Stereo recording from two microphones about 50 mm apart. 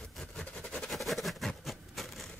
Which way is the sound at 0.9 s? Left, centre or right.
Centre.